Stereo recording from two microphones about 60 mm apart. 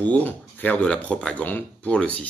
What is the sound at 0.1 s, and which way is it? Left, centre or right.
Speech, left.